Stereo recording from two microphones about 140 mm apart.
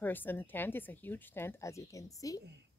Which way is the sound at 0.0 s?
15° left (ahead or behind).